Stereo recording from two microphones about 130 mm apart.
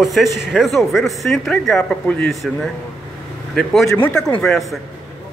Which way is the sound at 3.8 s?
15° left (ahead or behind).